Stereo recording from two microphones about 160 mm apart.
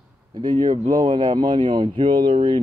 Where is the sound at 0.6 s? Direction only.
30° right (ahead or behind).